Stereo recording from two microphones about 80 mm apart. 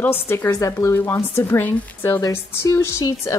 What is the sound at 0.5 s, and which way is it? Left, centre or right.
Speech, left.